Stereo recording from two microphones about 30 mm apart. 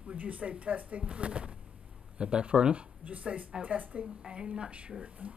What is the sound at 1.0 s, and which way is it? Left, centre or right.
Speech, right.